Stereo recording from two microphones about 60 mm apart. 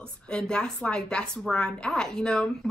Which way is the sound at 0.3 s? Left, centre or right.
Centre.